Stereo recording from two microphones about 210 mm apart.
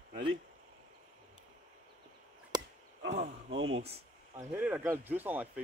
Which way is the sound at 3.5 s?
60° right (ahead or behind).